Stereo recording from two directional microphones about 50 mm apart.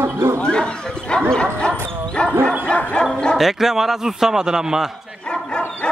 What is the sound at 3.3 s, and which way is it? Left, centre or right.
A man's voice, centre.